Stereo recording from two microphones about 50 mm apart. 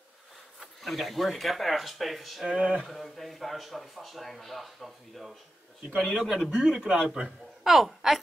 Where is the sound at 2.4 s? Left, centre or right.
Centre.